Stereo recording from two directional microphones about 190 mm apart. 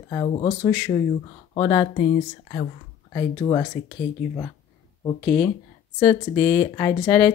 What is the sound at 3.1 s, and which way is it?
Speech, 20° left (ahead or behind).